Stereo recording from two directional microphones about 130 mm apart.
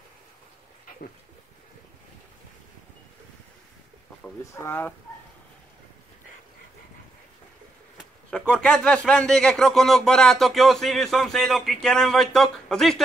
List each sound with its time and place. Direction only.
4.2 s speech: 15° left (ahead or behind)
8.0 s speech: 5° left (ahead or behind)